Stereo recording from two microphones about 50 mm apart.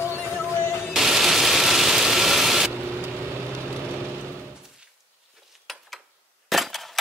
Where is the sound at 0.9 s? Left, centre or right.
Centre.